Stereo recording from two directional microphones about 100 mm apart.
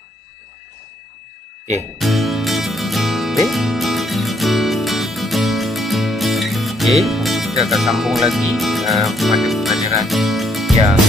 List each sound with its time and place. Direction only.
2.0 s music: centre (ahead or behind)